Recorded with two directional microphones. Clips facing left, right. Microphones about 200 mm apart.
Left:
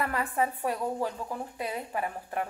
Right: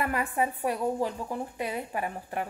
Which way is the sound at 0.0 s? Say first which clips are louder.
Right 1 dB; 15° right (ahead or behind).